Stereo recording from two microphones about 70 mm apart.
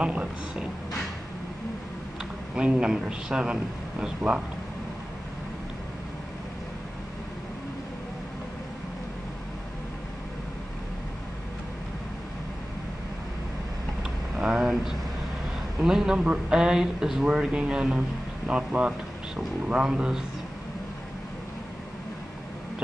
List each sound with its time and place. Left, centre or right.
0.0 s speech: centre
2.5 s speech: centre
14.4 s speech: centre